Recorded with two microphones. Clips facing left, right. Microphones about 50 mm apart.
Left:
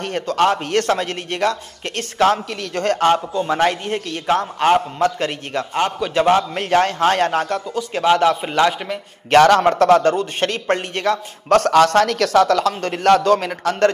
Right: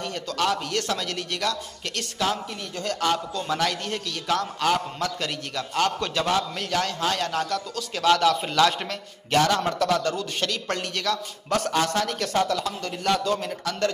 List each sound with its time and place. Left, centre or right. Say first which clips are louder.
0.0 s a man's voice: left 9 dB; left
7.7 s speech: left 5 dB; left
9.3 s a man's voice: left 10 dB; left
11.4 s a man's voice: left 11 dB; left